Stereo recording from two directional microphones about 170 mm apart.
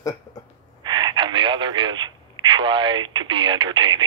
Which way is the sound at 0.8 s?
25° right (ahead or behind).